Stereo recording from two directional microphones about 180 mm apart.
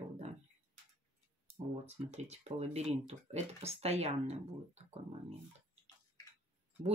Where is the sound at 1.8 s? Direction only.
40° right (ahead or behind).